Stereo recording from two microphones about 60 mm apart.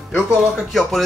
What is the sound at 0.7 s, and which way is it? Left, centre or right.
Speech, centre.